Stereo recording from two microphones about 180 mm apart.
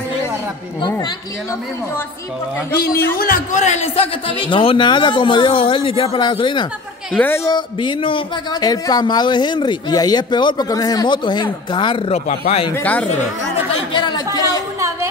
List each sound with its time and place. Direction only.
0.7 s speech: 25° left (ahead or behind)
2.7 s a man's voice: 60° left (ahead or behind)
3.2 s a man's voice: 45° left (ahead or behind); by 6.7 s 25° left (ahead or behind)
7.2 s speech: 15° left (ahead or behind)
12.3 s a man's voice: 35° left (ahead or behind)
12.7 s speech: 10° left (ahead or behind)
13.9 s speech: 25° left (ahead or behind)